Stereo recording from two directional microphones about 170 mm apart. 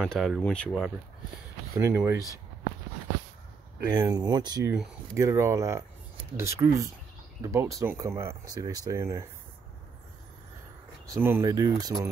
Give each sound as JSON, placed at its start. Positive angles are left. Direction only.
{"t": 0.0, "sound": "speech", "side_deg": 0}
{"t": 1.8, "sound": "speech", "side_deg": -15}
{"t": 3.9, "sound": "speech", "side_deg": -20}
{"t": 11.1, "sound": "speech", "side_deg": -15}